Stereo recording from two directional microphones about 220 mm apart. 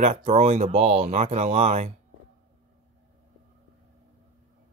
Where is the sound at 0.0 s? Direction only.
30° right (ahead or behind).